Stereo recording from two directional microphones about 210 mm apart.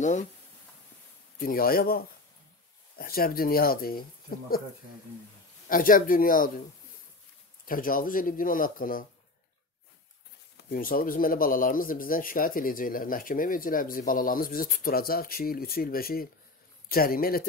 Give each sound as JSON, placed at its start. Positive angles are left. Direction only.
{"t": 1.4, "sound": "speech", "side_deg": 45}
{"t": 5.7, "sound": "a man's voice", "side_deg": 40}
{"t": 7.6, "sound": "a man's voice", "side_deg": 40}
{"t": 10.7, "sound": "a man's voice", "side_deg": 40}